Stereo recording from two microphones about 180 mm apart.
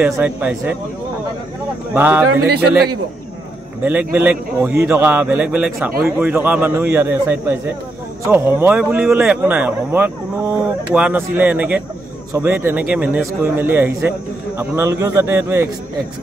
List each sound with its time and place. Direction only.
0.0 s speech: 10° right (ahead or behind)
2.0 s speech: 10° right (ahead or behind)
3.8 s speech: 10° right (ahead or behind)